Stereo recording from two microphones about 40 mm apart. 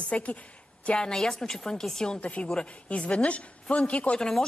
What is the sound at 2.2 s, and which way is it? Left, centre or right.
A woman's voice, left.